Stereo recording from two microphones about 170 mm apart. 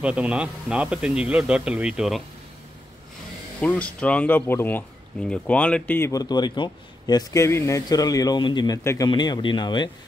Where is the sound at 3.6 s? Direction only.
5° left (ahead or behind); by 9.8 s 25° left (ahead or behind).